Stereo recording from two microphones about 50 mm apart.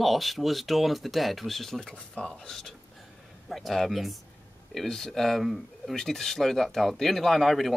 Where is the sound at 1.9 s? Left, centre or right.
Centre.